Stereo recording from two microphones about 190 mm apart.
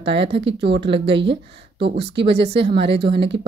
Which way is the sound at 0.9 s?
65° right (ahead or behind).